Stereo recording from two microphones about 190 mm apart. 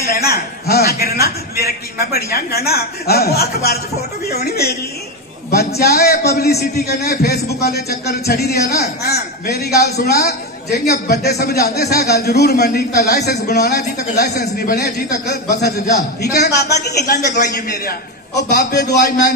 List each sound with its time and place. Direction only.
0.0 s a man's voice: 55° left (ahead or behind)
5.8 s a man's voice: 55° left (ahead or behind)